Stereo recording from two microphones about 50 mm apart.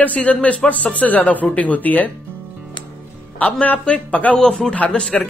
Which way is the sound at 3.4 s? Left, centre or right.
Left.